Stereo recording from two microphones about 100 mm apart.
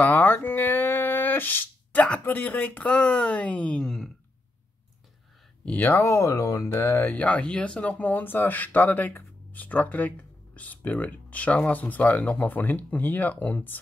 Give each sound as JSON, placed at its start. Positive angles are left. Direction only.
{"t": 0.0, "sound": "speech", "side_deg": 15}
{"t": 5.7, "sound": "speech", "side_deg": 20}
{"t": 7.1, "sound": "speech", "side_deg": 10}